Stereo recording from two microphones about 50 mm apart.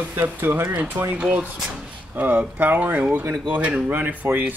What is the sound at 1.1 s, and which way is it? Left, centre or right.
Speech, right.